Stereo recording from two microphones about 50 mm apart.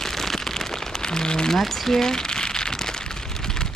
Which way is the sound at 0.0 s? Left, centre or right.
Centre.